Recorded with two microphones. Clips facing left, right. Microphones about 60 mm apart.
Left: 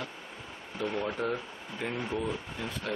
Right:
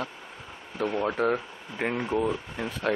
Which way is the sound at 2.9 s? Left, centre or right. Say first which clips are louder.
Right 8 dB; right.